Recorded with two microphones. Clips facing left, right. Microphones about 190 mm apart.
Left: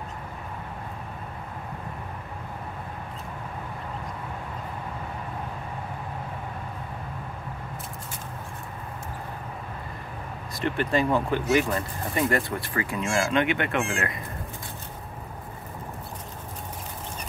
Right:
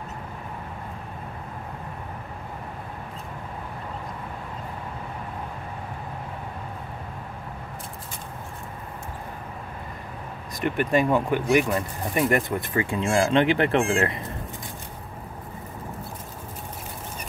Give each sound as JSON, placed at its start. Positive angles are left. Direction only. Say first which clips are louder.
{"t": 10.6, "sound": "speech", "louder": "right 2 dB", "side_deg": -15}